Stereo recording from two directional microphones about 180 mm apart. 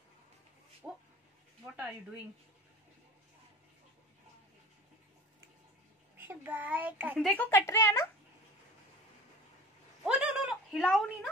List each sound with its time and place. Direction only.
0.8 s speech: 5° right (ahead or behind)
6.1 s a child's voice: 10° right (ahead or behind)
7.2 s speech: centre (ahead or behind)
7.4 s speech: 15° left (ahead or behind)
10.0 s a sound: 5° right (ahead or behind)